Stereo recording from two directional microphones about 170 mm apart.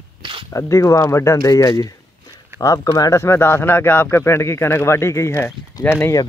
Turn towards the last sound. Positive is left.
turn(degrees=15)  # may be behind; listen again after turning